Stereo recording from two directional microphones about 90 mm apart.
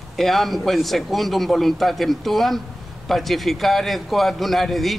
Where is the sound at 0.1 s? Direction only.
Centre (ahead or behind).